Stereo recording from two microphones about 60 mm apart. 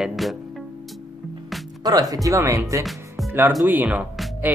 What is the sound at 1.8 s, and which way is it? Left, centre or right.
Speech, right.